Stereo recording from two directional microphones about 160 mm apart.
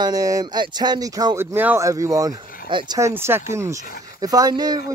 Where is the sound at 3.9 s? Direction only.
65° left (ahead or behind).